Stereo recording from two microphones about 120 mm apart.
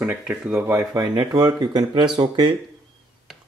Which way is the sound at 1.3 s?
35° right (ahead or behind).